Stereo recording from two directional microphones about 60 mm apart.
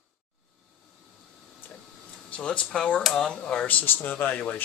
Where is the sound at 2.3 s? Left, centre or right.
Centre.